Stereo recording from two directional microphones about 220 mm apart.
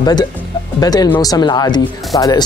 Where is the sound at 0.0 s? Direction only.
20° left (ahead or behind).